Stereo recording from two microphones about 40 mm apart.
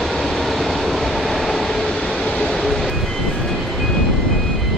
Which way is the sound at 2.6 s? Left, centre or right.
Centre.